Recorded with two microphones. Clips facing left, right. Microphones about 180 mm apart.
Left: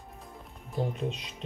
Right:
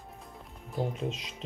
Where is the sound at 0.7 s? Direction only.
Centre (ahead or behind).